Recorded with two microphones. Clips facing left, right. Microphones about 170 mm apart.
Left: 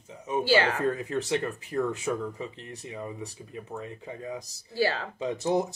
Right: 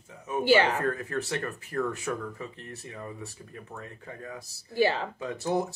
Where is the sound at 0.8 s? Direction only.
15° left (ahead or behind).